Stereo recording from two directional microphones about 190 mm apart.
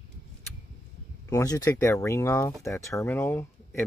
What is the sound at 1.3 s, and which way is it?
Speech, 15° left (ahead or behind).